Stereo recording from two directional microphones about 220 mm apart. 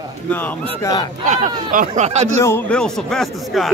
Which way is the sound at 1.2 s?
35° right (ahead or behind).